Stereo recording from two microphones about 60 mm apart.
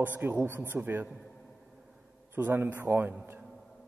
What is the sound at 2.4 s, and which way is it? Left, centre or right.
Speech, right.